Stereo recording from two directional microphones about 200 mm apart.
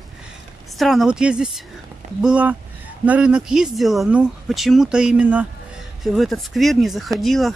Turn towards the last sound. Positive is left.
turn(degrees=0)  # may be behind; listen again after turning